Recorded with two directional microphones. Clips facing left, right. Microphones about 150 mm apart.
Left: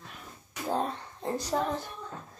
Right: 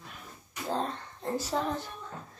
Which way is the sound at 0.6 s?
10° left (ahead or behind).